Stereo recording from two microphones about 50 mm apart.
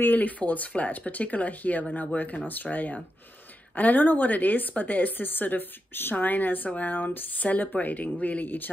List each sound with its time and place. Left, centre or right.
0.0 s speech: left